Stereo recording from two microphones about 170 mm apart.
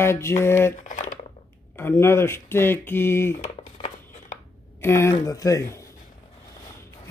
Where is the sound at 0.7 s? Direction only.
50° left (ahead or behind).